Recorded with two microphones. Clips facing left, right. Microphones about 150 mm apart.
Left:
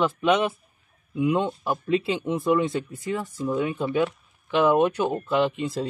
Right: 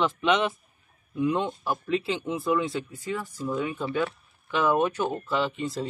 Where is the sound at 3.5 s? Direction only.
15° left (ahead or behind).